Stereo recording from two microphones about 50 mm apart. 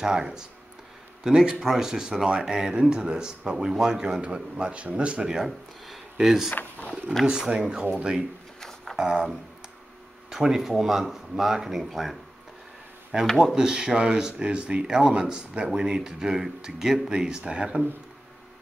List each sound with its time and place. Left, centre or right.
0.0 s speech: centre
6.5 s speech: left
7.2 s speech: centre
8.5 s a sound: centre
8.9 s speech: centre
13.1 s speech: centre